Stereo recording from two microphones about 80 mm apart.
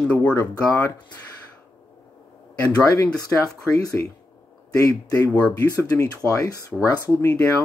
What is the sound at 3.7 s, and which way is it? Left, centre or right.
Speech, left.